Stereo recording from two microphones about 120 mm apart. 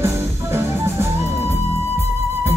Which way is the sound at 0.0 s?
20° right (ahead or behind).